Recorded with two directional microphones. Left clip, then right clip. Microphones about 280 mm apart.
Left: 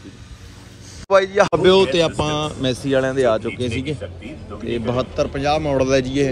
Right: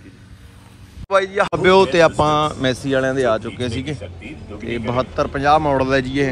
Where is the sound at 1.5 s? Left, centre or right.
Centre.